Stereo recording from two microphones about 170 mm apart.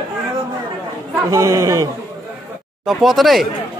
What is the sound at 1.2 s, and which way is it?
Speech, 20° right (ahead or behind).